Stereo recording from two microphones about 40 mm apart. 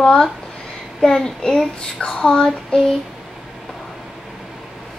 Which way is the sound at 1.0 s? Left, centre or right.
Centre.